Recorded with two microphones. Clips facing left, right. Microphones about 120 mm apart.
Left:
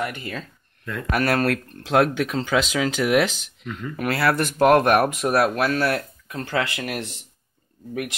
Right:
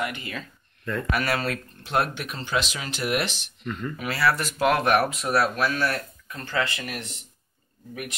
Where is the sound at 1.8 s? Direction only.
90° left.